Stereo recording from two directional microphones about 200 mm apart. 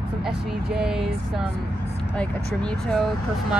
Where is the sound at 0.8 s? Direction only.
Centre (ahead or behind).